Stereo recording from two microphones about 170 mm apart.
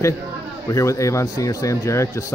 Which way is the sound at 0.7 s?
20° left (ahead or behind).